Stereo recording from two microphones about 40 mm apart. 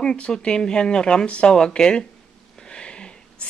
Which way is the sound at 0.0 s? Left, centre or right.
Centre.